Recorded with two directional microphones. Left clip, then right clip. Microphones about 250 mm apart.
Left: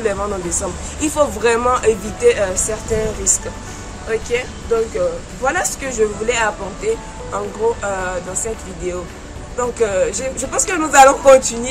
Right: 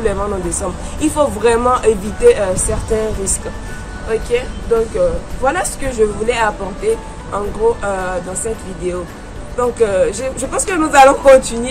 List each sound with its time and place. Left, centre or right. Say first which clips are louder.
0.0 s speech: right 2 dB; centre
4.1 s speech: right 3 dB; centre